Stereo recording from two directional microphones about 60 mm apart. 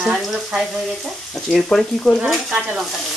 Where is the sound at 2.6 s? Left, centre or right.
Centre.